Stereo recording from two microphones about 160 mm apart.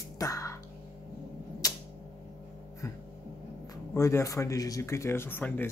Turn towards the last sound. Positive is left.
turn(degrees=10)  # may be behind; listen again after turning